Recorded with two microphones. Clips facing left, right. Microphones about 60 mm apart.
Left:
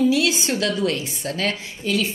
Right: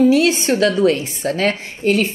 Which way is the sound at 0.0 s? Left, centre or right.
Right.